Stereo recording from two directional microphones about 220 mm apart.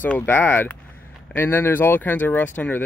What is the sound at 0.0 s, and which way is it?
Speech, 5° left (ahead or behind).